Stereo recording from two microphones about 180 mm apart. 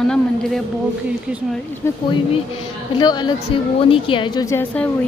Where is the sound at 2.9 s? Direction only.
25° left (ahead or behind).